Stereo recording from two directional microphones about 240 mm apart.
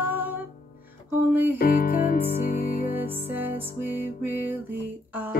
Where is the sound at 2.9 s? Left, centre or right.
Centre.